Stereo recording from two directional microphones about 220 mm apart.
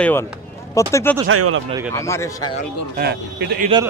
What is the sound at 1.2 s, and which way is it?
Speech, 70° right (ahead or behind).